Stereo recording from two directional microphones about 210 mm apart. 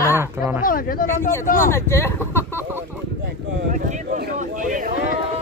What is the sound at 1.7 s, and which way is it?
Speech, 10° left (ahead or behind).